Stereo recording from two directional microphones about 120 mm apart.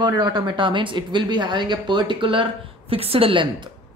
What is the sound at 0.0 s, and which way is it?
A woman's voice, 35° right (ahead or behind).